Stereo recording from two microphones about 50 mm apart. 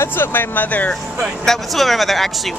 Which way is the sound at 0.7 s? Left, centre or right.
Left.